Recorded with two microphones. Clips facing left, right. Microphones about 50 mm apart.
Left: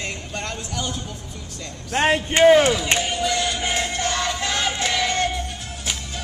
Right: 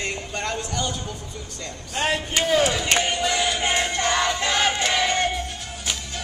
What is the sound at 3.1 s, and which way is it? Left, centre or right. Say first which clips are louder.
Music: even; centre.